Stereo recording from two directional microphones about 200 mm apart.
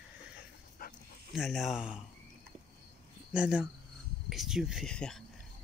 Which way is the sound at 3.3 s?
5° right (ahead or behind).